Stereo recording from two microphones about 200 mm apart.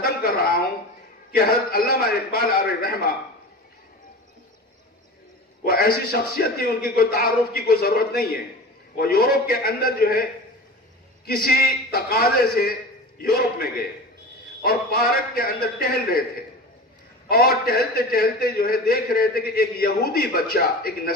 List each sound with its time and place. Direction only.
1.3 s a man's voice: 45° left (ahead or behind)
5.6 s a man's voice: 50° left (ahead or behind)
11.2 s a man's voice: 50° left (ahead or behind)
17.3 s a man's voice: 50° left (ahead or behind)